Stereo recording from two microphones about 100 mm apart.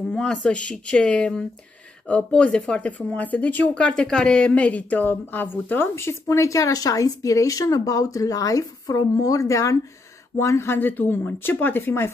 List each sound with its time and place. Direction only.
0.1 s speech: 10° left (ahead or behind)